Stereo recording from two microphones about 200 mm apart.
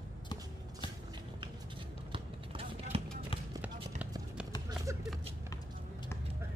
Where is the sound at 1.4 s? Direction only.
25° right (ahead or behind).